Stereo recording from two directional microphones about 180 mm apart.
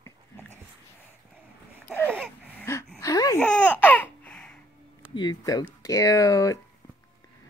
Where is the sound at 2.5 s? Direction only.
15° left (ahead or behind).